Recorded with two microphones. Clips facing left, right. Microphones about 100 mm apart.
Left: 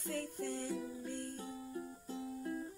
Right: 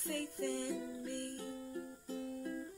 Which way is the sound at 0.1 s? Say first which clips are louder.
Right 2 dB; 60° right (ahead or behind).